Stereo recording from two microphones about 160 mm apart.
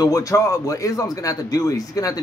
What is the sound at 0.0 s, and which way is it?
A man's voice, 20° left (ahead or behind).